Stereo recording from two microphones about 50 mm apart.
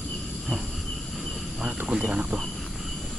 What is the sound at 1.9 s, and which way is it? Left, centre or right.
Cricket, right.